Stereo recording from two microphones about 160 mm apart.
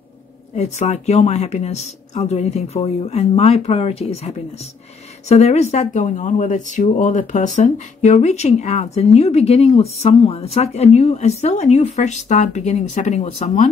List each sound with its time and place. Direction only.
0.6 s speech: 45° left (ahead or behind)